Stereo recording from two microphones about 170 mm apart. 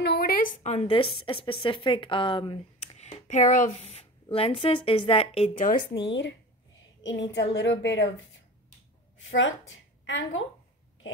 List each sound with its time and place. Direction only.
0.0 s a woman's voice: 65° left (ahead or behind); by 5.7 s 35° left (ahead or behind)
6.0 s a woman's voice: 90° left
9.4 s speech: 90° left